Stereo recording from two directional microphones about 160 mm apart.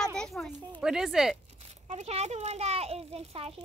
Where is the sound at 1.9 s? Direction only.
45° right (ahead or behind).